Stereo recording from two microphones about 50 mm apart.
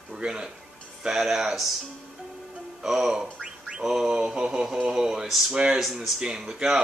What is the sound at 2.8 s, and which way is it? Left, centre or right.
Speech, centre.